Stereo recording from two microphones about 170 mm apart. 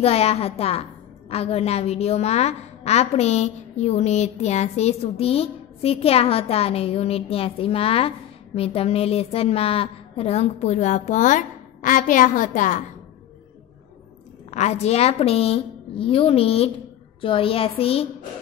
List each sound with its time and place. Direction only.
0.0 s a woman's voice: 35° left (ahead or behind)
14.5 s a woman's voice: 40° left (ahead or behind)